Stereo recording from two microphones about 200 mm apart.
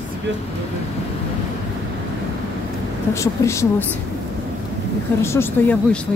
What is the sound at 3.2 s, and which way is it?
Speech, 15° left (ahead or behind).